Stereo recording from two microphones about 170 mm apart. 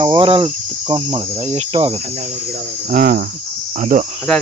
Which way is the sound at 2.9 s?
60° right (ahead or behind).